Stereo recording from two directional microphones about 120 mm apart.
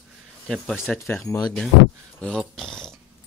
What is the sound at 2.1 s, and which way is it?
Dog, 5° left (ahead or behind).